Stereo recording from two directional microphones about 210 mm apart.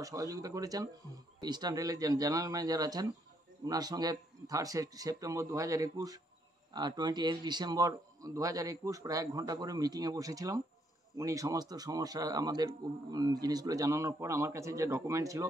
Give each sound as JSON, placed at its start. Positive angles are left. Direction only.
{"t": 0.0, "sound": "a man's voice", "side_deg": -15}